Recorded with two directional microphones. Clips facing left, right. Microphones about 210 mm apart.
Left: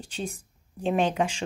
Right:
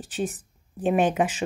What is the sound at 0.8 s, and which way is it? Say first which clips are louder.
Speech: right 3 dB; 10° right (ahead or behind).